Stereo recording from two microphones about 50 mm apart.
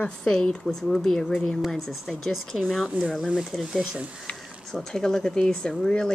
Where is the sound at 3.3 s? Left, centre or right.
Centre.